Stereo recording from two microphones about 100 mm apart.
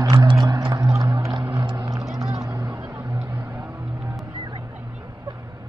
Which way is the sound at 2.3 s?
35° right (ahead or behind).